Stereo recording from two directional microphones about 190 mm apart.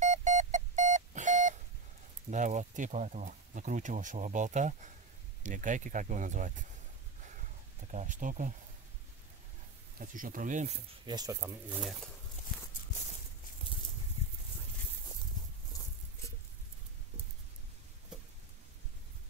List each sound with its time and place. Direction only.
0.0 s alarm clock: 40° right (ahead or behind)
2.3 s speech: 40° right (ahead or behind)
7.9 s speech: 40° right (ahead or behind)
9.9 s speech: 45° right (ahead or behind)
11.1 s speech: 20° right (ahead or behind)